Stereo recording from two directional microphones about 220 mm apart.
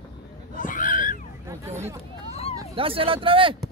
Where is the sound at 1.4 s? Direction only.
10° right (ahead or behind).